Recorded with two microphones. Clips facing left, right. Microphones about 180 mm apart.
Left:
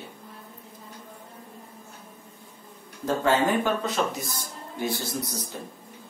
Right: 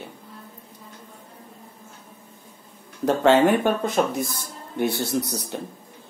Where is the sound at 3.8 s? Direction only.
55° right (ahead or behind).